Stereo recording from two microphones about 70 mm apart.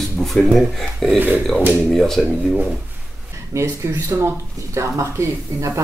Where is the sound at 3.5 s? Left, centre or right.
Right.